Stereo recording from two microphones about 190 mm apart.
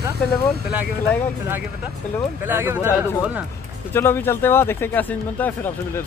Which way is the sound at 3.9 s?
10° left (ahead or behind).